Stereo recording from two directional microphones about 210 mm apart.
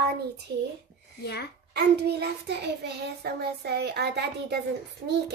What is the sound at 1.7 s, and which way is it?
Child singing, 50° right (ahead or behind).